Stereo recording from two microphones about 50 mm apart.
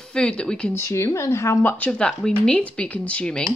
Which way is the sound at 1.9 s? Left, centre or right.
Centre.